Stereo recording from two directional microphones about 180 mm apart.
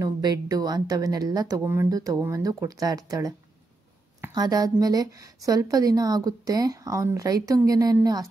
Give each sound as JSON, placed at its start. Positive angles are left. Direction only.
{"t": 0.0, "sound": "a woman's voice", "side_deg": -20}